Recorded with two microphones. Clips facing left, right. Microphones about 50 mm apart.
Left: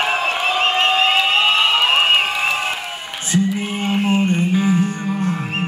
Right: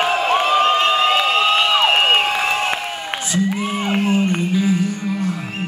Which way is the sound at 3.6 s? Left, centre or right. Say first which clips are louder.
Right 1 dB; right.